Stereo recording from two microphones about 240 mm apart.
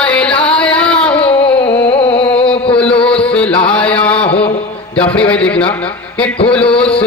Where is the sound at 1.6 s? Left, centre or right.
Left.